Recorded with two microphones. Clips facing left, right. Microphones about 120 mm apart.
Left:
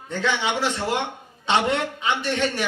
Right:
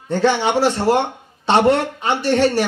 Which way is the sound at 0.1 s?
35° right (ahead or behind).